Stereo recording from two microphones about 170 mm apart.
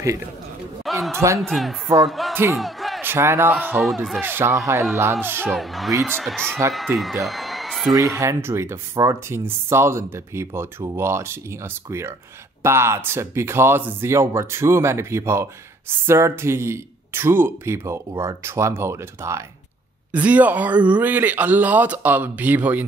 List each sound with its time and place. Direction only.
0.8 s a sound: centre (ahead or behind)
1.1 s speech: 15° right (ahead or behind)
1.4 s speech: centre (ahead or behind)
2.5 s a sound: centre (ahead or behind)
3.0 s speech: 15° right (ahead or behind)
4.2 s speech: 10° right (ahead or behind)
5.5 s speech: centre (ahead or behind)
6.9 s speech: 15° right (ahead or behind)
7.2 s a sound: centre (ahead or behind)
8.2 s speech: 15° right (ahead or behind)